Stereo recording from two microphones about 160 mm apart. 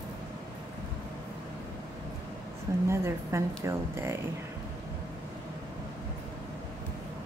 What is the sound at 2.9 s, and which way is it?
A woman's voice, 15° right (ahead or behind).